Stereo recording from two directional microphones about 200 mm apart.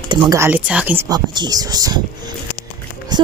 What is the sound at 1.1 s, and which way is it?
Speech, 20° right (ahead or behind).